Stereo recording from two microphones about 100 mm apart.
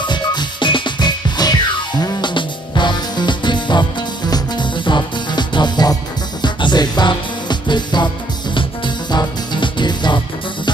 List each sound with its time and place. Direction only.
0.0 s music: 50° left (ahead or behind)